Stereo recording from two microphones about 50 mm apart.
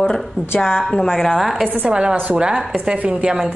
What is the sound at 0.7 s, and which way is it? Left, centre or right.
Speech, centre.